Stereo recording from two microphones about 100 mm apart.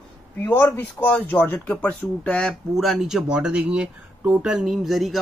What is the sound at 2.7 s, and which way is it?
Speech, centre (ahead or behind).